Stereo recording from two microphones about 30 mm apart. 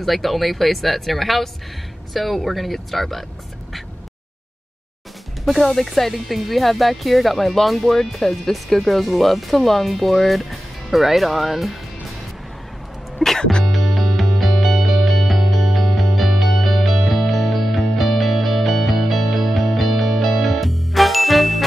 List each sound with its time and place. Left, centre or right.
0.0 s speech: centre
5.6 s speech: centre
13.4 s music: left
13.7 s music: centre